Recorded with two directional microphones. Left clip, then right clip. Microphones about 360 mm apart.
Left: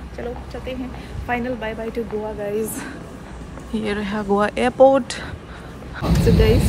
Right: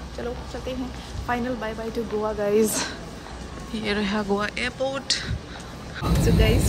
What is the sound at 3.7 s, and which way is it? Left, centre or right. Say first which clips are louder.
Speech: left 1 dB; centre.